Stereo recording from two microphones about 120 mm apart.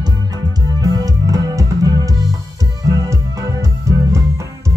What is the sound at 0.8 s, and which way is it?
Music, 30° right (ahead or behind).